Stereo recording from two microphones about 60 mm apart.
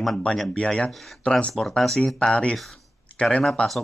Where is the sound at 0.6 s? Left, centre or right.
Centre.